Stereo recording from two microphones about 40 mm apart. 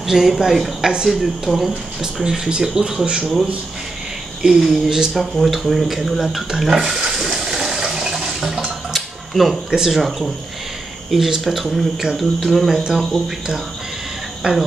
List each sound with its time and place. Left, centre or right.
0.0 s speech: centre
0.7 s speech: centre
2.2 s speech: centre
4.4 s speech: centre
5.1 s speech: centre
7.2 s toilet flush: centre
8.9 s a sound: centre
9.8 s speech: centre
11.1 s speech: centre
14.4 s a sound: centre